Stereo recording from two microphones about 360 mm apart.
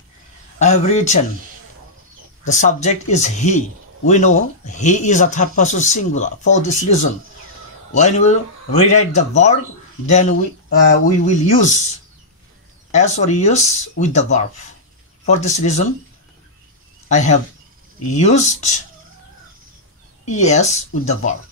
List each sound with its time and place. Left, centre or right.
0.6 s speech: centre
2.4 s speech: centre
12.9 s speech: centre
17.1 s speech: centre
20.2 s speech: centre